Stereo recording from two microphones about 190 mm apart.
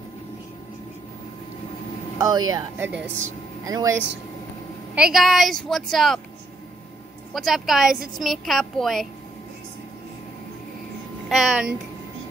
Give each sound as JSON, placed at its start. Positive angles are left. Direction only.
{"t": 2.1, "sound": "speech", "side_deg": -20}
{"t": 2.9, "sound": "speech", "side_deg": -70}
{"t": 3.6, "sound": "speech", "side_deg": -20}
{"t": 4.9, "sound": "a woman's voice", "side_deg": -5}
{"t": 7.3, "sound": "a woman's voice", "side_deg": 0}
{"t": 11.2, "sound": "speech", "side_deg": -5}